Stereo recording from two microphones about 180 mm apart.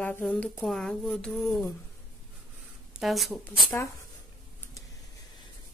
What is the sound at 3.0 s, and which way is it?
Speech, centre (ahead or behind).